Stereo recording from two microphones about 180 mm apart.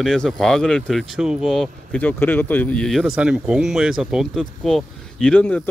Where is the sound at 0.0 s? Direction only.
5° left (ahead or behind).